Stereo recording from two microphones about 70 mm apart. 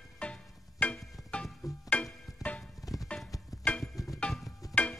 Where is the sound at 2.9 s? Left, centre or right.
Left.